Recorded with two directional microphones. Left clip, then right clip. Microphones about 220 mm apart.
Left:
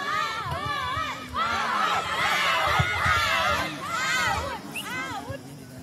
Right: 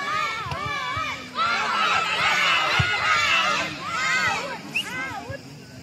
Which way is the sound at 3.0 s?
30° right (ahead or behind).